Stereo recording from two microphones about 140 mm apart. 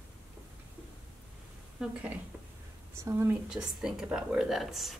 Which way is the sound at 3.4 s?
5° right (ahead or behind).